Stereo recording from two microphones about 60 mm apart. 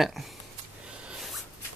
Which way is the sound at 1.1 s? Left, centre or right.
Centre.